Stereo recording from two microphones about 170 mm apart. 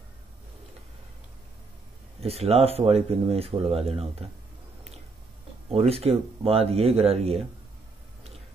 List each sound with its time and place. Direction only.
2.1 s speech: 35° right (ahead or behind)
5.7 s speech: 35° right (ahead or behind)